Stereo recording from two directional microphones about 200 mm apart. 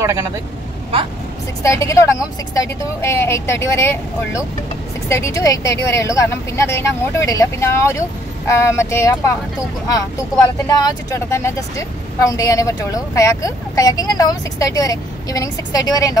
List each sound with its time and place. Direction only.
0.0 s speech: 15° right (ahead or behind)
1.6 s a woman's voice: 15° left (ahead or behind)
10.8 s a woman's voice: 20° left (ahead or behind)